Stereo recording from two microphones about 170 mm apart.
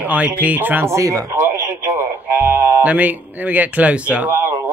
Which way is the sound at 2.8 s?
10° right (ahead or behind).